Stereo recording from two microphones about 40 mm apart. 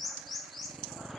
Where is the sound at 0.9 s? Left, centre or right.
Centre.